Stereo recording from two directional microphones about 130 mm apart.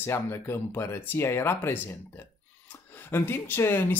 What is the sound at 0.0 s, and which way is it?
Speech, 20° left (ahead or behind).